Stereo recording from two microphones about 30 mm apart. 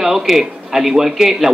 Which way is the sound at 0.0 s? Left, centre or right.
Centre.